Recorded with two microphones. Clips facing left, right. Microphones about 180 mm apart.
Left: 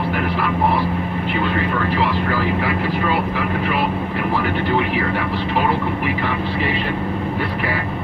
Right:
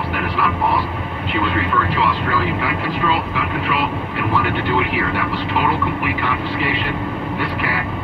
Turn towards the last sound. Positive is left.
turn(degrees=35)  # may be behind; listen again after turning